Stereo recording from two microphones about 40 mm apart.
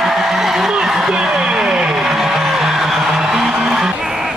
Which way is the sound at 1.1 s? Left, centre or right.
Right.